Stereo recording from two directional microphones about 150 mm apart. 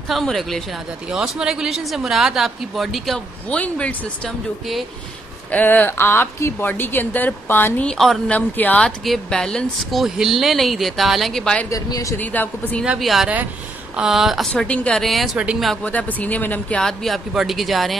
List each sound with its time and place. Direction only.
0.1 s speech: centre (ahead or behind)
11.7 s speech: 20° left (ahead or behind)
12.2 s speech: 10° left (ahead or behind)
12.8 s speech: 5° right (ahead or behind)
15.8 s speech: 10° left (ahead or behind)